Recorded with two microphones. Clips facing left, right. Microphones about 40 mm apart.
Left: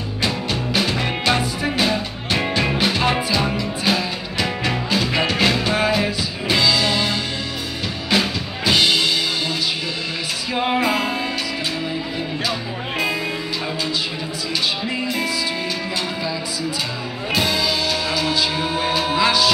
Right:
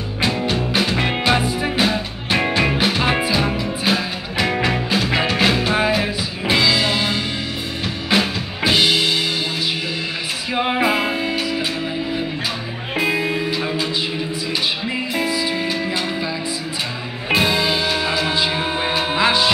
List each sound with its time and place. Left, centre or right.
0.2 s music: centre
10.5 s music: centre
12.9 s music: centre
14.9 s music: centre
17.3 s music: right